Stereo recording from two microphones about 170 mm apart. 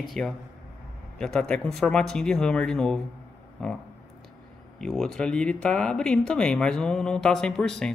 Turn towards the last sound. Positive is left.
turn(degrees=5)  # may be behind; listen again after turning